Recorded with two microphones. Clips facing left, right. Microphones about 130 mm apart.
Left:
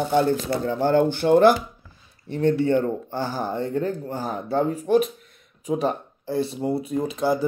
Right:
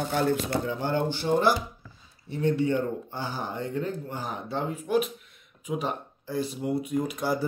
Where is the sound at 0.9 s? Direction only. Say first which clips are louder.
Left 8 dB; 55° left (ahead or behind).